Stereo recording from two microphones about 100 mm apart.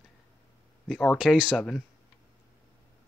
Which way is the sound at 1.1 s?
5° right (ahead or behind).